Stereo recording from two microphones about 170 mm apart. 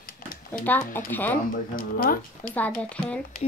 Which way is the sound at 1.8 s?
55° left (ahead or behind).